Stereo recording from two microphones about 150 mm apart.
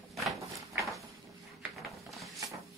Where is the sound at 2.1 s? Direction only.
Centre (ahead or behind).